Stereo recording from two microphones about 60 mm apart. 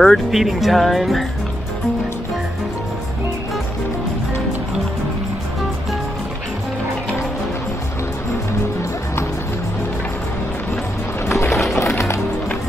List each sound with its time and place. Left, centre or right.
0.0 s speech: centre
11.2 s music: left